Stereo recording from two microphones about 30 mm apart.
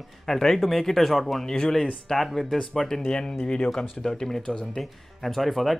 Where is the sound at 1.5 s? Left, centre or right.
Centre.